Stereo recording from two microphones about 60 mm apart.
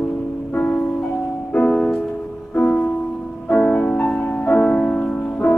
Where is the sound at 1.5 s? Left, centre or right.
Centre.